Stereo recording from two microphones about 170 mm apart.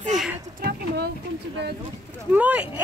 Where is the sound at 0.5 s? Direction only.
70° right (ahead or behind).